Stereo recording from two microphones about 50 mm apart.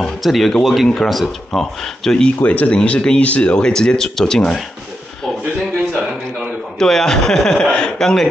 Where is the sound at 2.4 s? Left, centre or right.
Left.